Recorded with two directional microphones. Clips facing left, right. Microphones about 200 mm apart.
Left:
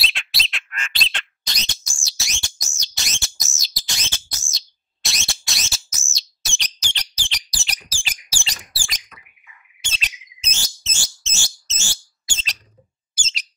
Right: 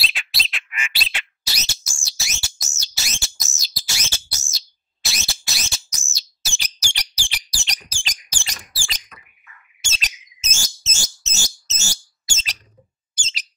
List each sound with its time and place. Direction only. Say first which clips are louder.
0.0 s bird: even; centre (ahead or behind)
7.6 s bird: even; 5° left (ahead or behind)
9.8 s bird: even; 45° right (ahead or behind)
13.1 s bird: even; 5° left (ahead or behind)